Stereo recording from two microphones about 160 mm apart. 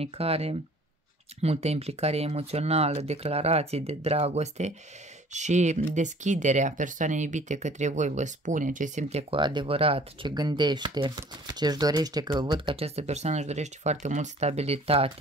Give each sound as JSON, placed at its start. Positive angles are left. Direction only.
{"t": 0.0, "sound": "speech", "side_deg": -40}
{"t": 9.3, "sound": "speech", "side_deg": -30}